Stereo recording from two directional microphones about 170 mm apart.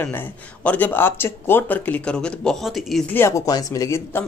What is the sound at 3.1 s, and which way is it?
Speech, 15° left (ahead or behind).